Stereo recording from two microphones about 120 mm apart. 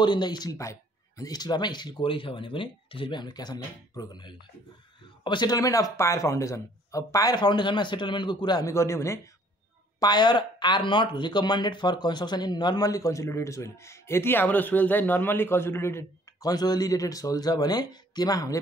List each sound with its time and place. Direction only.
0.0 s speech: 35° left (ahead or behind)
8.6 s speech: 25° left (ahead or behind)
9.9 s speech: 35° left (ahead or behind)